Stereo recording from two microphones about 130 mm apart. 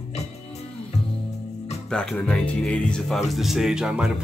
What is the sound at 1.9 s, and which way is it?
Speech, 5° left (ahead or behind).